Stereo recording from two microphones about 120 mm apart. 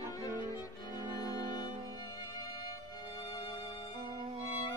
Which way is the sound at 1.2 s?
30° left (ahead or behind).